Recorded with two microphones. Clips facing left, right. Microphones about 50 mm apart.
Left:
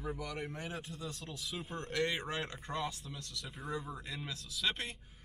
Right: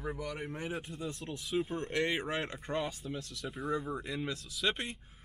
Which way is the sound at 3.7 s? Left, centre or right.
Centre.